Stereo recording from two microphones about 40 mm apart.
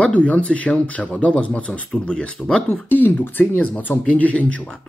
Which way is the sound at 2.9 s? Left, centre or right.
Left.